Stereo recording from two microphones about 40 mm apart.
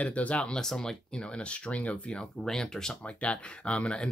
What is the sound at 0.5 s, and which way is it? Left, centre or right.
Speech, centre.